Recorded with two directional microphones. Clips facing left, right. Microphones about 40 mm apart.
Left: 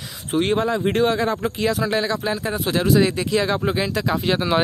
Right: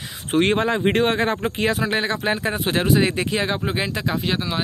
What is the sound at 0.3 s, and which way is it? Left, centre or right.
Speech, right.